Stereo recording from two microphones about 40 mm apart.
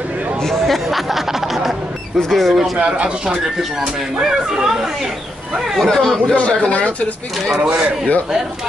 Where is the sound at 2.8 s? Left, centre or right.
Right.